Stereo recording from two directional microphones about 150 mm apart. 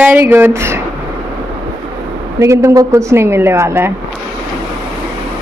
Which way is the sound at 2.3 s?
20° right (ahead or behind).